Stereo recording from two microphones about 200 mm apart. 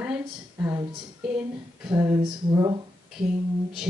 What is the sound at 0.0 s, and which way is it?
A woman's voice, 10° right (ahead or behind).